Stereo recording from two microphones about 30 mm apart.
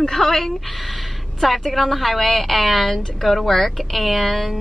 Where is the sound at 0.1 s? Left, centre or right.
Centre.